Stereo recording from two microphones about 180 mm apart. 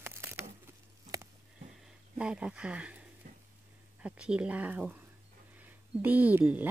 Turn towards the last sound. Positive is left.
turn(degrees=-10)  # may be behind; listen again after turning